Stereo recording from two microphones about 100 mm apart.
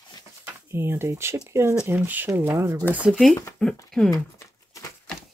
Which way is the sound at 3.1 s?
Centre (ahead or behind).